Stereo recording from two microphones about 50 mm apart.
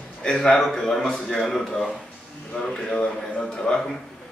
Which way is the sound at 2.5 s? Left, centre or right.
Centre.